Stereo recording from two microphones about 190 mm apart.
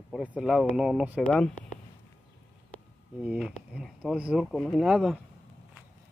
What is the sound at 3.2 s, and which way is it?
Speech, 5° right (ahead or behind).